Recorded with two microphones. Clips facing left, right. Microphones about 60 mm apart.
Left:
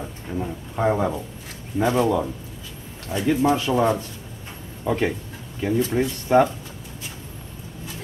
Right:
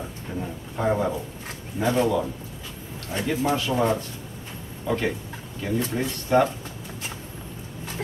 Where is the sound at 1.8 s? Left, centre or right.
Left.